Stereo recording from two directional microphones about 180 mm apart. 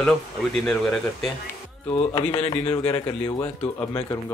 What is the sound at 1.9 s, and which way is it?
Speech, 30° left (ahead or behind).